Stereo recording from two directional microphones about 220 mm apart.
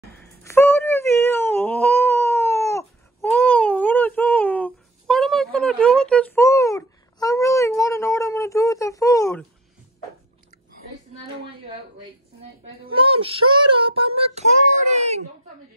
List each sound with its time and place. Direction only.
0.2 s wail: 10° left (ahead or behind)
12.8 s child singing: 25° right (ahead or behind)
14.9 s a sound: 30° right (ahead or behind)